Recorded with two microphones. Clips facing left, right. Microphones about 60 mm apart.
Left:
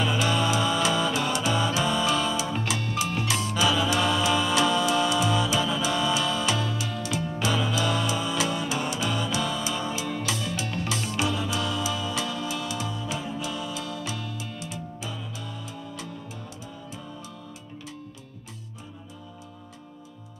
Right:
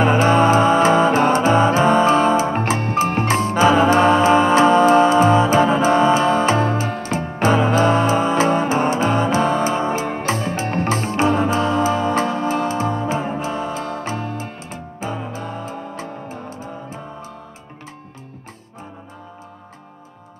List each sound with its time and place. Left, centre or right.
0.0 s music: right